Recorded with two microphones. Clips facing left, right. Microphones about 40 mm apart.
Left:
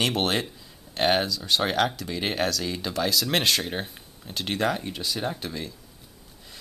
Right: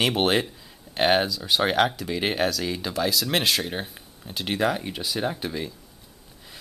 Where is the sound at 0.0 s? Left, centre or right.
Centre.